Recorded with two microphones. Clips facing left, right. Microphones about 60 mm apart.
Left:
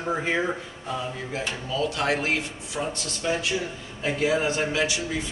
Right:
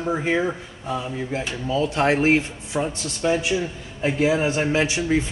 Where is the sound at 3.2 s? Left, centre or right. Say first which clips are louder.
Right 5 dB; centre.